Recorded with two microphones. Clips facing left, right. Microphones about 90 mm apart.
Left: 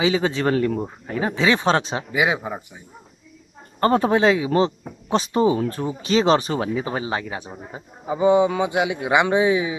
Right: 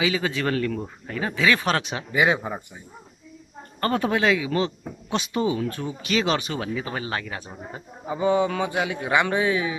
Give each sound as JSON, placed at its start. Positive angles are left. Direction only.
{"t": 0.0, "sound": "speech", "side_deg": 25}
{"t": 2.1, "sound": "speech", "side_deg": 5}
{"t": 3.8, "sound": "speech", "side_deg": 30}